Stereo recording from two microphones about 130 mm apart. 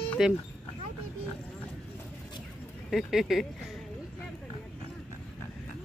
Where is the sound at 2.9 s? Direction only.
Centre (ahead or behind).